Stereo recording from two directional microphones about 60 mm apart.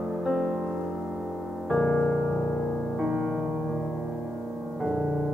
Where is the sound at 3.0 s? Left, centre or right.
Centre.